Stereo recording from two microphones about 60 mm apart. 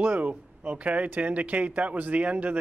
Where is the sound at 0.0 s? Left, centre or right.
Right.